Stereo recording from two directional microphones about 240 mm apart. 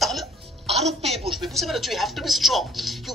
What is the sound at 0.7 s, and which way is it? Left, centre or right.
Music, right.